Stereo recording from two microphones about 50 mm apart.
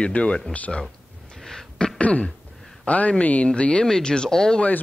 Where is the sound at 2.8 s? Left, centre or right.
Left.